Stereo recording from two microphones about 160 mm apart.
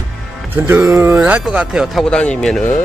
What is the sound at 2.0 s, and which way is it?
Speech, 5° left (ahead or behind).